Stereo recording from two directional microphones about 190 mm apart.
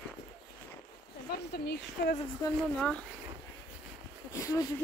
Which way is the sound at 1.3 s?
55° left (ahead or behind).